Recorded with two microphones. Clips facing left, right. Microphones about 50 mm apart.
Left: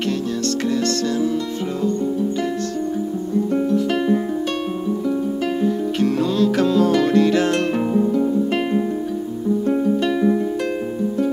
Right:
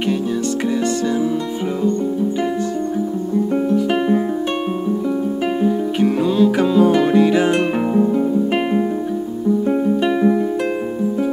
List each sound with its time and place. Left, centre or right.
3.5 s music: centre
5.6 s music: centre